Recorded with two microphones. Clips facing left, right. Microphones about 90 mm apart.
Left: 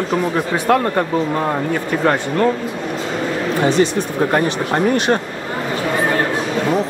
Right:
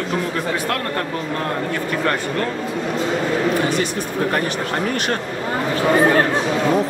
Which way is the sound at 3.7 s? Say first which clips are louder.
Left 6 dB; 25° left (ahead or behind).